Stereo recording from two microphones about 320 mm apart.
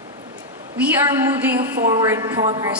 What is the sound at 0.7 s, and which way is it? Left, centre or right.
A man's voice, centre.